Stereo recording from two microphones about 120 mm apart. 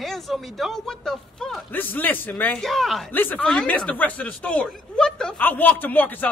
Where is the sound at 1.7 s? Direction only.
15° left (ahead or behind).